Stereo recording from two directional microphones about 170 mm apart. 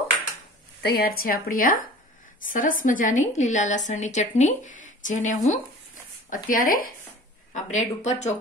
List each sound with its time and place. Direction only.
0.8 s a woman's voice: 60° left (ahead or behind)
7.5 s a woman's voice: 40° left (ahead or behind)